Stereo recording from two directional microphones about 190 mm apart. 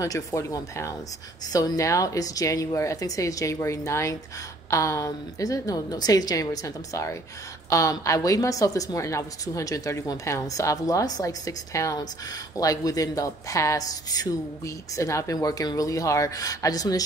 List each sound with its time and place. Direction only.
0.0 s a woman's voice: 15° left (ahead or behind)